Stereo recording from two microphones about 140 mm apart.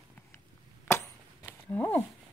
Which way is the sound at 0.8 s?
15° left (ahead or behind).